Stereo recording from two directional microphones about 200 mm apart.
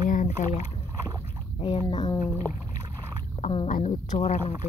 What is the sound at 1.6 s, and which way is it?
Speech, 25° left (ahead or behind).